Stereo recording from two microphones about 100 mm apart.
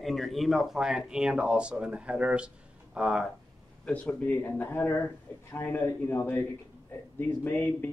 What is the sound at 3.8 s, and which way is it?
Speech, 10° left (ahead or behind).